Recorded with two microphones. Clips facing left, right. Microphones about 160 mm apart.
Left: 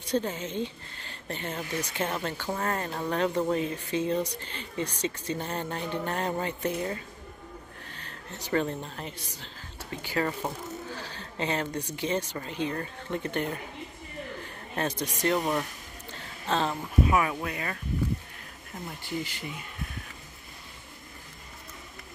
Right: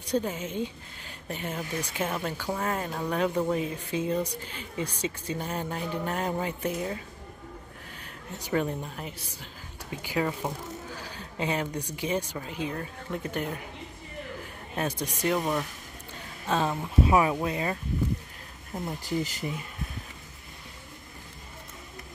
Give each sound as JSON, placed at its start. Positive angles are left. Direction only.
{"t": 0.1, "sound": "a man's voice", "side_deg": -10}
{"t": 16.4, "sound": "speech", "side_deg": -10}
{"t": 17.1, "sound": "speech", "side_deg": -25}
{"t": 19.0, "sound": "speech", "side_deg": -40}